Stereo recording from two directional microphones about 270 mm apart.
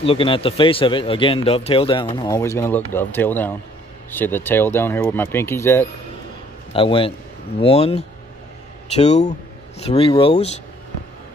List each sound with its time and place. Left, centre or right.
0.0 s speech: centre
6.7 s speech: centre